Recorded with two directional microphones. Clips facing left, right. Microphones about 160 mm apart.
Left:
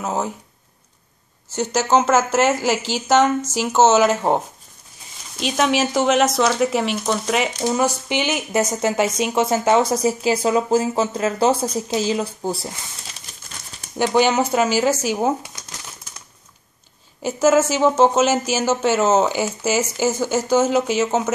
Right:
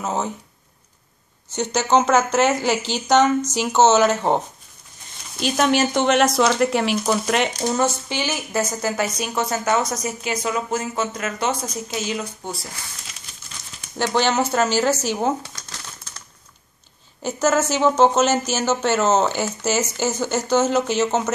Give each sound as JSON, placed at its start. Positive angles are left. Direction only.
{"t": 0.0, "sound": "speech", "side_deg": 5}
{"t": 1.5, "sound": "speech", "side_deg": 5}
{"t": 5.4, "sound": "speech", "side_deg": 0}
{"t": 13.9, "sound": "speech", "side_deg": 10}
{"t": 15.4, "sound": "crumpling", "side_deg": 20}
{"t": 17.2, "sound": "speech", "side_deg": 5}